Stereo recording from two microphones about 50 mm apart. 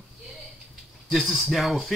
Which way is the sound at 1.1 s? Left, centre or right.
Centre.